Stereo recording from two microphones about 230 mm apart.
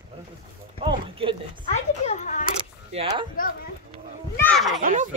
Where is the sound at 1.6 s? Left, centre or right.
Left.